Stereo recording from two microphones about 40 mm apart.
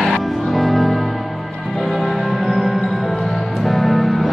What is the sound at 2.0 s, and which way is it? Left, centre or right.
Music, centre.